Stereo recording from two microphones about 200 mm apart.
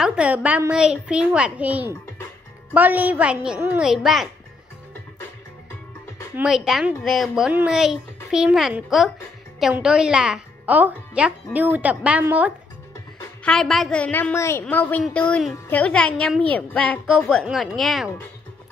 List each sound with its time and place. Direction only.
0.0 s a woman's voice: 5° right (ahead or behind)
6.3 s a woman's voice: 5° right (ahead or behind)
13.4 s a woman's voice: 5° left (ahead or behind)